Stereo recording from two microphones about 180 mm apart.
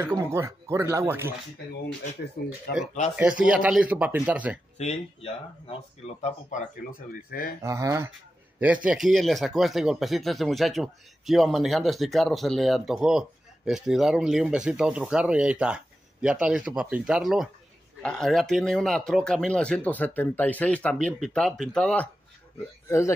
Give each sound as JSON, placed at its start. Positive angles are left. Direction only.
{"t": 0.0, "sound": "speech", "side_deg": -15}
{"t": 2.7, "sound": "speech", "side_deg": 60}
{"t": 3.2, "sound": "speech", "side_deg": -5}
{"t": 4.7, "sound": "speech", "side_deg": 35}
{"t": 7.6, "sound": "speech", "side_deg": -15}